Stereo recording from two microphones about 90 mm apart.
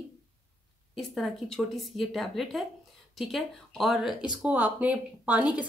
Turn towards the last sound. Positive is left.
turn(degrees=-15)  # may be behind; listen again after turning